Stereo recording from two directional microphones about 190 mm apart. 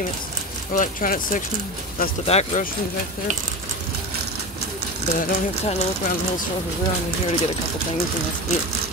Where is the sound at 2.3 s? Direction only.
35° left (ahead or behind).